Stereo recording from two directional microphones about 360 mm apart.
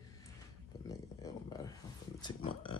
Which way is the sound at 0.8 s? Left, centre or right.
Centre.